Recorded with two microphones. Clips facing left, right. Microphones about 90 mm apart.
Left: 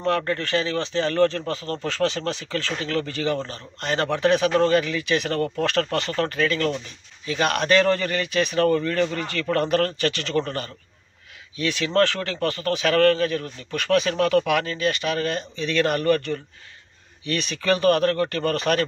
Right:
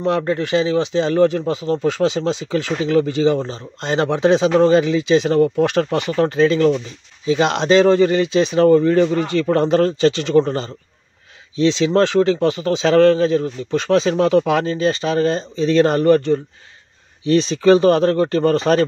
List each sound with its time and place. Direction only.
0.0 s speech: 15° right (ahead or behind)